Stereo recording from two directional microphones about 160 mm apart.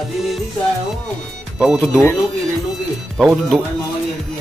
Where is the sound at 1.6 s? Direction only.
Centre (ahead or behind).